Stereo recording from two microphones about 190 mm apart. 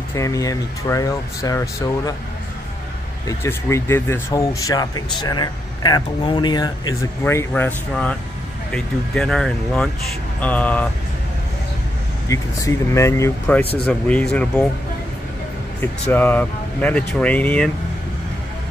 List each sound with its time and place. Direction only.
0.1 s speech: 15° left (ahead or behind)
3.3 s speech: 15° left (ahead or behind)
12.3 s speech: 15° left (ahead or behind)
15.8 s speech: 10° left (ahead or behind)